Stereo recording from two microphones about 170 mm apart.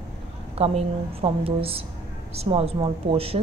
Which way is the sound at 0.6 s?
35° right (ahead or behind).